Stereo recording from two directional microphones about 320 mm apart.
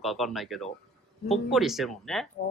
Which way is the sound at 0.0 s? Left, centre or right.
Centre.